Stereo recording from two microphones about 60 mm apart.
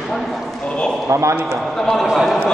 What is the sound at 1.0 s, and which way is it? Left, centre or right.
Speech, right.